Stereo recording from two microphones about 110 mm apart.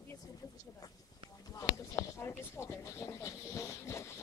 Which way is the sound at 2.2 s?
25° left (ahead or behind).